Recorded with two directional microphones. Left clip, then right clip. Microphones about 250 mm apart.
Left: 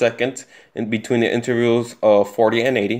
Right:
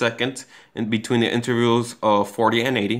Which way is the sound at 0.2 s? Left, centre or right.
Right.